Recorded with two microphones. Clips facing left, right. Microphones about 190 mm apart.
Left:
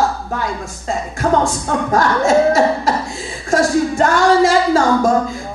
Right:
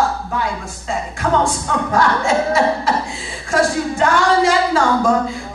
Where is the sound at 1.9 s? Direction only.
40° left (ahead or behind).